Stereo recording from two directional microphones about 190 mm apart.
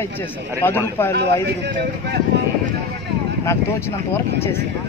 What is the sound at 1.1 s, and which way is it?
A man's voice, 60° right (ahead or behind).